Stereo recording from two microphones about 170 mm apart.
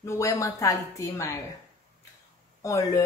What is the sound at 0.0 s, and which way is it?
A woman's voice, 20° left (ahead or behind).